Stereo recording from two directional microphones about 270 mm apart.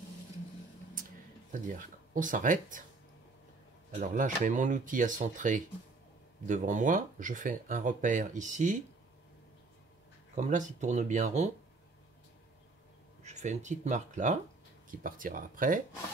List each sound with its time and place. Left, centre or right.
1.5 s speech: right
3.9 s speech: right
10.3 s speech: right
13.2 s speech: right